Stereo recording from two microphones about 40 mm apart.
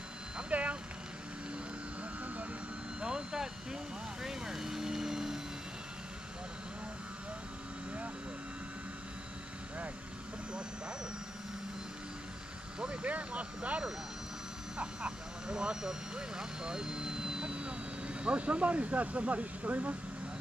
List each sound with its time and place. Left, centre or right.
0.5 s vehicle: right
3.0 s speech: right
12.8 s speech: right